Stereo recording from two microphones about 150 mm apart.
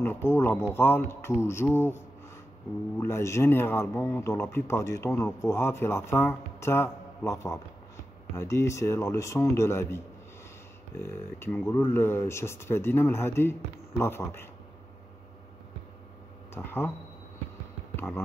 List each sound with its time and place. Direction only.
0.0 s speech: 15° left (ahead or behind)
16.5 s speech: 15° left (ahead or behind)
17.9 s speech: 15° left (ahead or behind)